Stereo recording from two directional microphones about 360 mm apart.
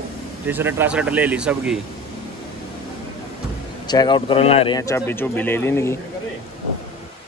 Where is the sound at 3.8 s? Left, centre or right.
Centre.